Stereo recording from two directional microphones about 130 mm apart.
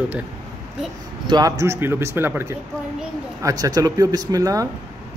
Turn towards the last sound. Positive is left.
turn(degrees=-25)  # may be behind; listen again after turning